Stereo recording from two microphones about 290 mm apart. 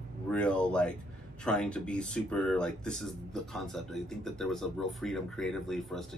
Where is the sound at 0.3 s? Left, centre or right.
Centre.